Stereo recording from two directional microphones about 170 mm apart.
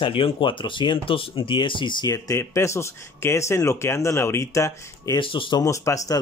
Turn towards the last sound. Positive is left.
turn(degrees=20)  # may be behind; listen again after turning